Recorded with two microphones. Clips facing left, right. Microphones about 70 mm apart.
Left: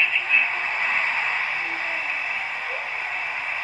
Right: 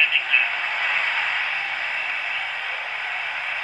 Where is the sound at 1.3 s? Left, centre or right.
Right.